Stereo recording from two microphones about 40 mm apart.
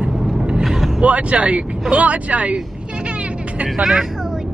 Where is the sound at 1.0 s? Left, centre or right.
Right.